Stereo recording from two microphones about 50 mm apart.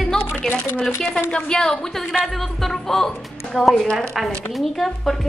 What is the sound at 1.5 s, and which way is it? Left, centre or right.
A woman's voice, centre.